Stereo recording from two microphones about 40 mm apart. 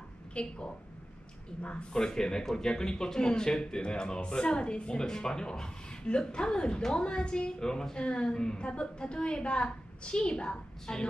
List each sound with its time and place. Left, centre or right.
0.3 s a woman's voice: left